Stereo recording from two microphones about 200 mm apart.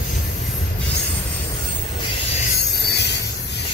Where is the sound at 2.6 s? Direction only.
55° left (ahead or behind).